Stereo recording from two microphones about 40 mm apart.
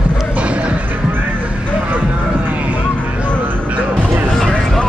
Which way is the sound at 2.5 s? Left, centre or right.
Right.